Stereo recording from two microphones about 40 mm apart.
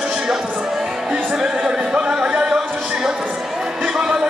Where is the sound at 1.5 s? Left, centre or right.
Right.